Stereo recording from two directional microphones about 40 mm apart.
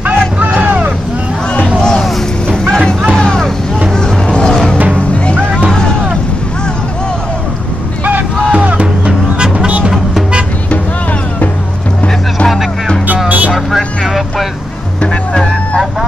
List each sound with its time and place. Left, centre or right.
1.8 s music: centre
3.9 s vehicle: centre
4.9 s music: left
8.0 s vehicle: right
8.5 s music: right
13.7 s music: centre
15.0 s music: left